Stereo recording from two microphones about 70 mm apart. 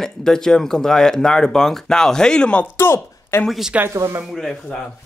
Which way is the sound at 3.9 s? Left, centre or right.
Right.